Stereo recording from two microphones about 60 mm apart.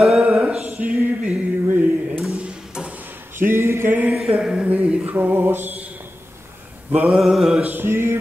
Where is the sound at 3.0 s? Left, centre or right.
Right.